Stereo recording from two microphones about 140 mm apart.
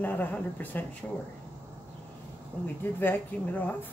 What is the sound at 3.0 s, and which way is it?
Speech, 15° left (ahead or behind).